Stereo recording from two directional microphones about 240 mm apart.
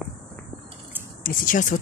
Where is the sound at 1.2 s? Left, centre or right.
Left.